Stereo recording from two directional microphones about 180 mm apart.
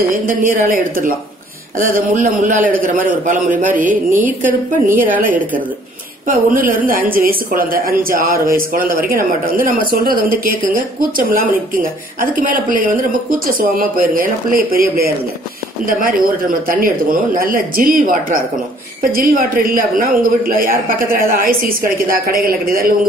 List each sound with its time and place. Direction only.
0.2 s a woman's voice: 50° right (ahead or behind)